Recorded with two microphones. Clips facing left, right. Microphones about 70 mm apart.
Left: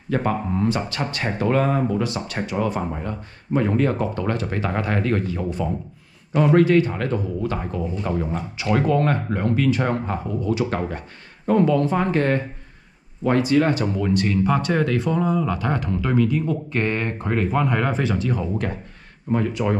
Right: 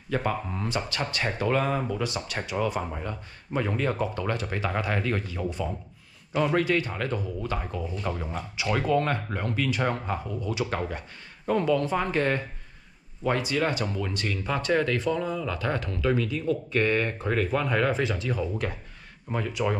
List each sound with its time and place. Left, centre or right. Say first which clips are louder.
0.1 s speech: left 6 dB; left
6.3 s a man's voice: left 7 dB; left
6.6 s speech: left 9 dB; left
13.8 s speech: left 9 dB; centre
19.3 s speech: left 6 dB; left